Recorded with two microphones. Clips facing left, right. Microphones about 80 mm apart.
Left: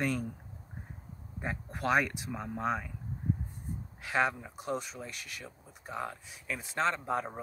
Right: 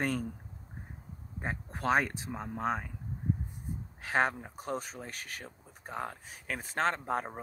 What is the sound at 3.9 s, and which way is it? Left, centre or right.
Speech, right.